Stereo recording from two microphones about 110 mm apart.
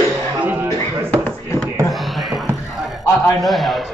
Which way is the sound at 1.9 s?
Centre (ahead or behind).